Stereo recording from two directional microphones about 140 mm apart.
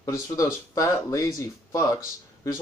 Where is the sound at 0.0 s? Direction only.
20° left (ahead or behind).